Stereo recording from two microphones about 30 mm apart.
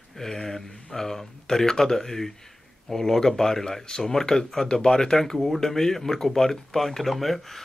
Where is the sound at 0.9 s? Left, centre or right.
Centre.